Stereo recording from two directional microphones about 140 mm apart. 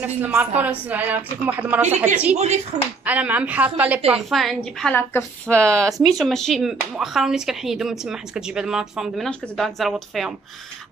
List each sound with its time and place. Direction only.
0.0 s a woman's voice: 10° right (ahead or behind)
2.3 s speech: 50° right (ahead or behind)
3.1 s a woman's voice: 10° right (ahead or behind)
4.1 s speech: centre (ahead or behind)